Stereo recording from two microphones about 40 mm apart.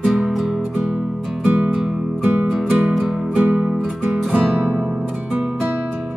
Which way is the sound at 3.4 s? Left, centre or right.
Right.